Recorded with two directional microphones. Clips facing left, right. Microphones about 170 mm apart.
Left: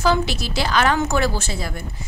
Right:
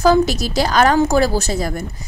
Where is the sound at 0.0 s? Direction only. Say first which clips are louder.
Right 6 dB; 40° right (ahead or behind).